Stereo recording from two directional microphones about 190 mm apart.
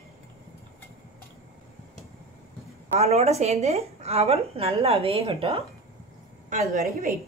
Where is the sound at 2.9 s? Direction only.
35° right (ahead or behind).